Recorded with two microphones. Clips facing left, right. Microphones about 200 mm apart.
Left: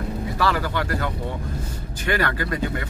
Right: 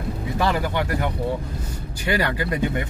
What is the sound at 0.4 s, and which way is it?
Speech, 20° right (ahead or behind).